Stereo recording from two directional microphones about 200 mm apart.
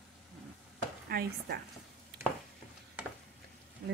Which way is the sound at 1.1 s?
50° right (ahead or behind).